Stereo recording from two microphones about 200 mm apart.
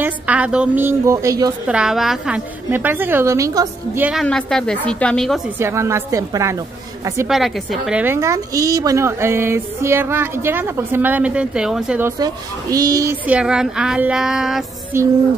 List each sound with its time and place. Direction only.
0.0 s a woman's voice: 5° right (ahead or behind)
1.7 s a woman's voice: 5° right (ahead or behind)
5.6 s a woman's voice: 15° right (ahead or behind)
7.2 s a woman's voice: centre (ahead or behind)
12.2 s a woman's voice: 15° right (ahead or behind)
13.3 s a woman's voice: 5° right (ahead or behind)
14.9 s a woman's voice: 15° right (ahead or behind)